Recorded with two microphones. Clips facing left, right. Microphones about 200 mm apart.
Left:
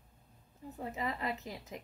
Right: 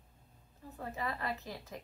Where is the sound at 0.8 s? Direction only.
20° left (ahead or behind).